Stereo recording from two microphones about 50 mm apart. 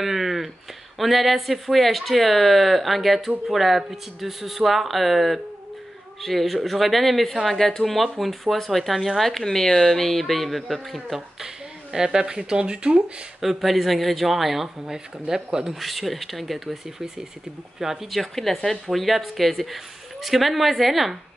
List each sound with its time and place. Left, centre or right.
0.0 s a sound: centre
0.9 s speech: centre
11.1 s speech: centre
13.4 s speech: centre